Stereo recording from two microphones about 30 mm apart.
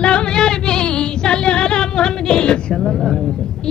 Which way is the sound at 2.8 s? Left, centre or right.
Centre.